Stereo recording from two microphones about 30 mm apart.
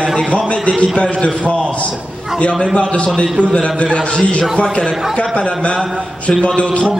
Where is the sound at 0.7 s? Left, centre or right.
Left.